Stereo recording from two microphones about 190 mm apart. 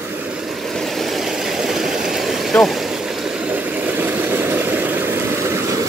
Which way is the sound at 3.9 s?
10° right (ahead or behind).